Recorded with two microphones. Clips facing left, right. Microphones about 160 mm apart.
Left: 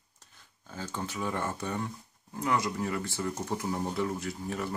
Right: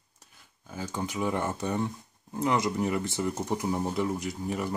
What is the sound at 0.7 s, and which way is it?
Speech, 15° right (ahead or behind).